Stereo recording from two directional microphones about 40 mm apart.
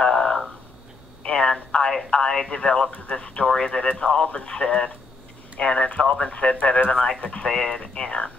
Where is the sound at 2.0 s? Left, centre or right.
Left.